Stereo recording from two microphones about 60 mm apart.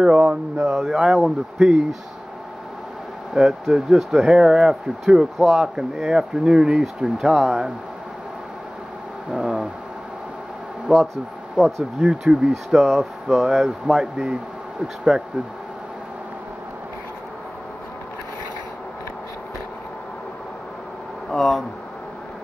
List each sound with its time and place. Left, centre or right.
0.0 s speech: centre
0.7 s speech: centre
3.4 s speech: centre
9.3 s a sound: centre
10.9 s speech: centre
12.7 s speech: centre
21.3 s speech: centre